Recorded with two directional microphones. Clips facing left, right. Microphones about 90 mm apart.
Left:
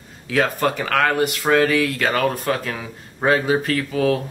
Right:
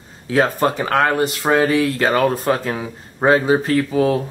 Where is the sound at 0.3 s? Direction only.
30° right (ahead or behind).